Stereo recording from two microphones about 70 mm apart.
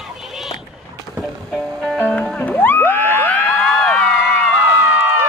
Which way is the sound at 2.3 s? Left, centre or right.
Left.